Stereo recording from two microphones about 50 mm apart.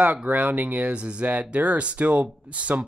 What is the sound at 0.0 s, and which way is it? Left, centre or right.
Speech, right.